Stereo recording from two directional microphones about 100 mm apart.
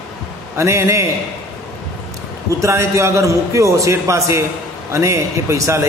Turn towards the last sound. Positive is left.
turn(degrees=-30)  # may be behind; listen again after turning